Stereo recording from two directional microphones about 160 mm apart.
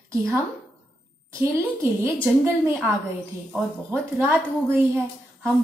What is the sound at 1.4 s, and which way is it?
A woman's voice, 15° right (ahead or behind).